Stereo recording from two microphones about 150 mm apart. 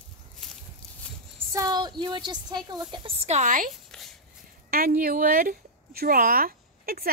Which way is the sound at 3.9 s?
Centre (ahead or behind).